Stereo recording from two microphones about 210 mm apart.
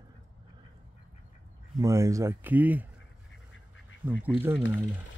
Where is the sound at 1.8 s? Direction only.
15° right (ahead or behind).